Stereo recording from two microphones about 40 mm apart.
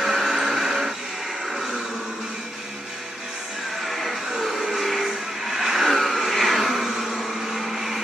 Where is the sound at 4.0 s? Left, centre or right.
Centre.